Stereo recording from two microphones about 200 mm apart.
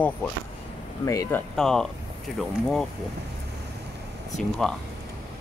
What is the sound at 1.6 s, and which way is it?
Speech, centre (ahead or behind).